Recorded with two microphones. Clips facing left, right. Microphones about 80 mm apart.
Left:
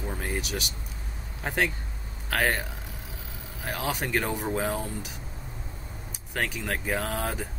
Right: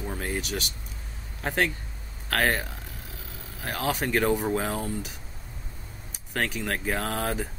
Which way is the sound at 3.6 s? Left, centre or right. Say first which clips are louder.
Right 2 dB; centre.